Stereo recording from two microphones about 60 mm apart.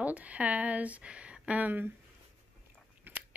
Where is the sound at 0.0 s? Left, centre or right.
Right.